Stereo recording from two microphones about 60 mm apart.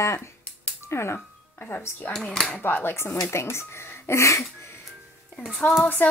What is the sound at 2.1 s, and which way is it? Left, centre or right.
Speech, centre.